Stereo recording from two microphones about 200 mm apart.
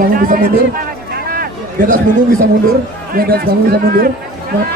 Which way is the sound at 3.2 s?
50° right (ahead or behind).